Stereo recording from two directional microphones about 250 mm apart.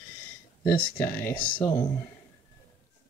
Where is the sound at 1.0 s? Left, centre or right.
Centre.